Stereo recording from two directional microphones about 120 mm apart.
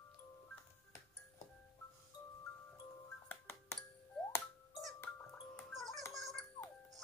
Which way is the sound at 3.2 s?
20° left (ahead or behind).